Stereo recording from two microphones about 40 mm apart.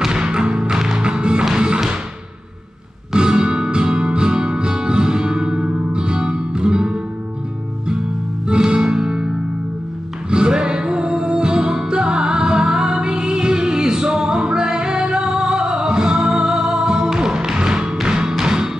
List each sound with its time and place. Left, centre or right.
0.0 s music: centre
3.1 s music: right
8.5 s music: right
10.3 s music: right